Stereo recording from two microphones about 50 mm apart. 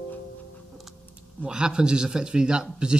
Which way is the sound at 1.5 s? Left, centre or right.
Centre.